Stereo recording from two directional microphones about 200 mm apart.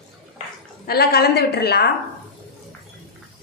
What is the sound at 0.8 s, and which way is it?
A woman's voice, 50° left (ahead or behind).